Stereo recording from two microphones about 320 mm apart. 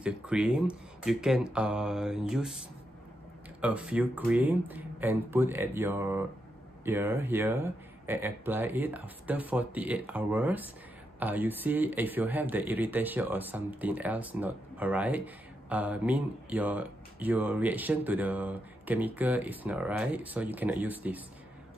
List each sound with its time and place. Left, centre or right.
0.0 s speech: centre
3.6 s speech: centre